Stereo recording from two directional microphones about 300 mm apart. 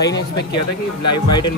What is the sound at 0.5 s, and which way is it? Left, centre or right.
Speech, left.